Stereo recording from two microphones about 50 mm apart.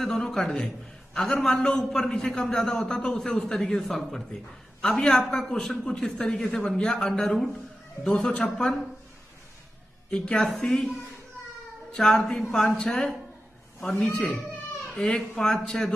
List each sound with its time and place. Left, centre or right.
0.0 s a man's voice: centre
4.9 s a man's voice: centre
8.1 s a man's voice: centre
10.1 s a man's voice: centre
11.9 s a man's voice: centre